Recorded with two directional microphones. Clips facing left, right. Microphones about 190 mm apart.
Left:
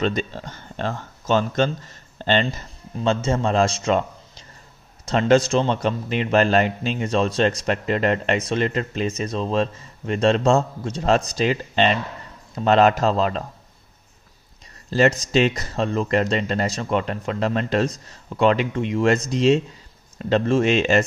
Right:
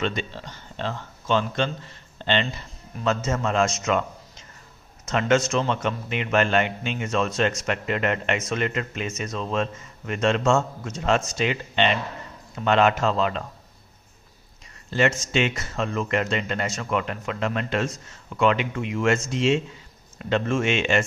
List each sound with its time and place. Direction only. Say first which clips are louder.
0.0 s speech: left 4 dB; 40° left (ahead or behind)
3.0 s a man's voice: left 3 dB; 30° left (ahead or behind)
14.9 s a man's voice: left 4 dB; 35° left (ahead or behind)